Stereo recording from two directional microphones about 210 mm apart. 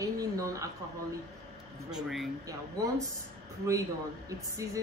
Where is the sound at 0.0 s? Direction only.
15° right (ahead or behind).